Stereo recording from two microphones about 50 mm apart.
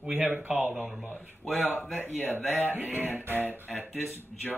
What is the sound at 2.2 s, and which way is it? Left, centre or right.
Speech, left.